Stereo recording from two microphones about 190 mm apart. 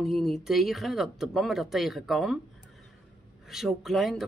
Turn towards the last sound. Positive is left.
turn(degrees=0)  # may be behind; listen again after turning